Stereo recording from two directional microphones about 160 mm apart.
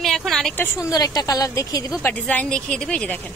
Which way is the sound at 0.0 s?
Centre (ahead or behind).